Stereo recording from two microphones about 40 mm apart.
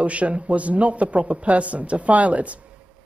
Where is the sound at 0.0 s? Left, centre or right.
Right.